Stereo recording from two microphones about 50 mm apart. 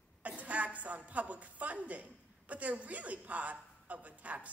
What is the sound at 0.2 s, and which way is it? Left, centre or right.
A woman's voice, right.